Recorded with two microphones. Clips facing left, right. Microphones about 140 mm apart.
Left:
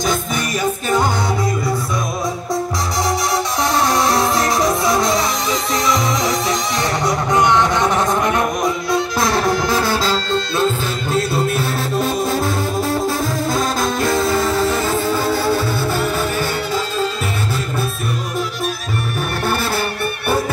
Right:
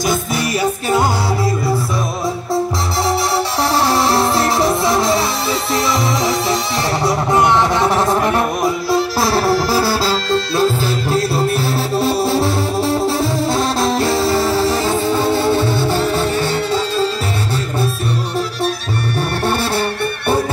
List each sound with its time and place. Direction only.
0.0 s music: 5° right (ahead or behind)
3.7 s music: 30° right (ahead or behind)
6.5 s music: 5° right (ahead or behind)
7.9 s a sound: 30° right (ahead or behind)
9.6 s music: 5° right (ahead or behind)
9.8 s music: 35° right (ahead or behind)
19.4 s music: 30° right (ahead or behind)